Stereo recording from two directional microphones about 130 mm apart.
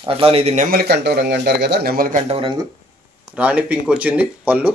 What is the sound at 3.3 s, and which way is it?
Speech, 10° right (ahead or behind).